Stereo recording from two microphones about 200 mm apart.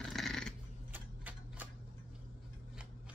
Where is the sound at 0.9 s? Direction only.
10° right (ahead or behind).